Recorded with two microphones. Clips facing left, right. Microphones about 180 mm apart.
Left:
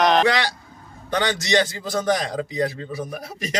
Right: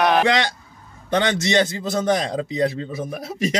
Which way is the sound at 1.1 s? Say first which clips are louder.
Right 2 dB; 25° right (ahead or behind).